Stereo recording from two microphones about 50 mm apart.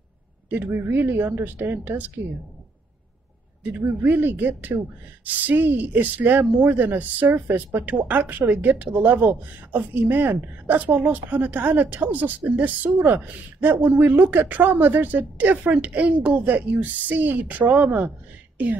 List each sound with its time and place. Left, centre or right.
0.8 s speech: right
3.8 s speech: right